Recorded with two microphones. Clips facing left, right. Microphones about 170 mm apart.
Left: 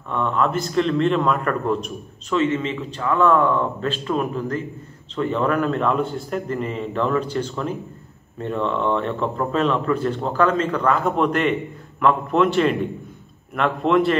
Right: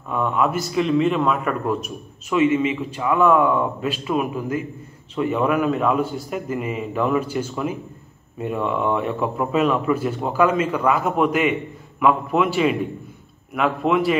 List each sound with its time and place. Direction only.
0.1 s a man's voice: 10° right (ahead or behind)